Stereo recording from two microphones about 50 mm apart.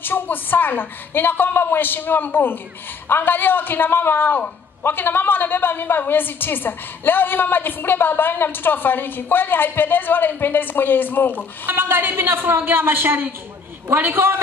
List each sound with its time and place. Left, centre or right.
0.0 s a woman's voice: left
11.6 s a woman's voice: right